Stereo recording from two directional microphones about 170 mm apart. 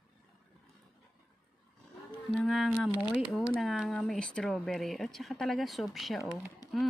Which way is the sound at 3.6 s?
Centre (ahead or behind).